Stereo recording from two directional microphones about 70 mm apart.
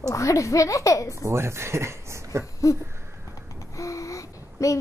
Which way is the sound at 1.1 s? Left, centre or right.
Right.